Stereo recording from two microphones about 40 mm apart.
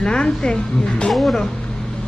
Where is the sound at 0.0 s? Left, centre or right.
Left.